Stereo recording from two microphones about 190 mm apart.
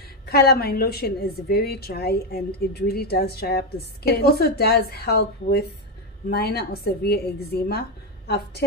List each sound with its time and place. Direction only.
0.3 s a woman's voice: 55° left (ahead or behind)